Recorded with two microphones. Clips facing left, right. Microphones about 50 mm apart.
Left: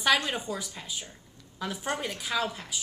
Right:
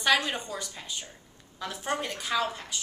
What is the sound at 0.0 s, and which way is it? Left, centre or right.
A woman's voice, centre.